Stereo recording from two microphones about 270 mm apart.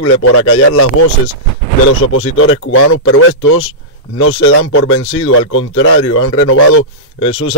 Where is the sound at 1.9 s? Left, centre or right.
Left.